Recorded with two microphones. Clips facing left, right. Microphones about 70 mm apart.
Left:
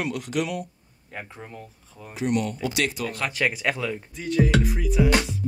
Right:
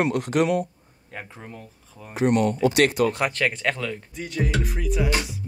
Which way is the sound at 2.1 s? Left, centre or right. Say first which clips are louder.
Right 5 dB; right.